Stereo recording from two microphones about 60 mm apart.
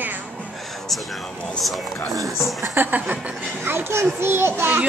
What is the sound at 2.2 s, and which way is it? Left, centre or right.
Speech, centre.